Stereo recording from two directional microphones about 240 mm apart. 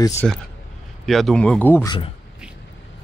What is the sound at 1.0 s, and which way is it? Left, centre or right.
Speech, centre.